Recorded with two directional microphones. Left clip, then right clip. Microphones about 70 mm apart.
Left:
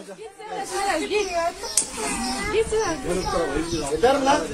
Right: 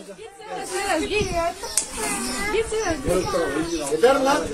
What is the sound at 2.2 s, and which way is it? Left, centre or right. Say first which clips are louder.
Speech: even; right.